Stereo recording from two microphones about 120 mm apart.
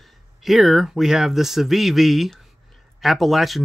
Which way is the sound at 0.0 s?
Centre (ahead or behind).